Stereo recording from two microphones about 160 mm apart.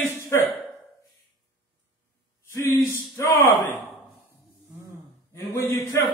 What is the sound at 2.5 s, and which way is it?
Speech, 20° left (ahead or behind).